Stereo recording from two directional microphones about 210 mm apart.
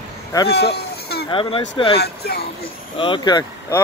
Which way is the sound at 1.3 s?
25° left (ahead or behind).